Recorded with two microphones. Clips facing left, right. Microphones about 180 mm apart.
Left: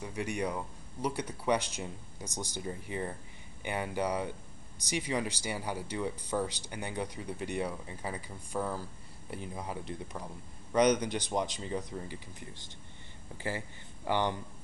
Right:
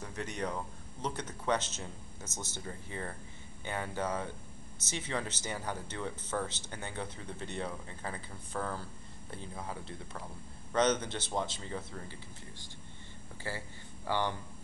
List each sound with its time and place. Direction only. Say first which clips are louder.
0.0 s speech: left 4 dB; 10° left (ahead or behind)
13.4 s speech: left 4 dB; 15° left (ahead or behind)